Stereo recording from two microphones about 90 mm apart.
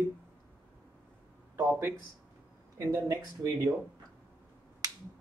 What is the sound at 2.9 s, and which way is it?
Speech, 40° right (ahead or behind).